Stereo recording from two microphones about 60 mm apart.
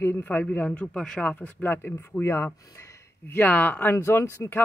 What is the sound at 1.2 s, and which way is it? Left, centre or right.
Speech, left.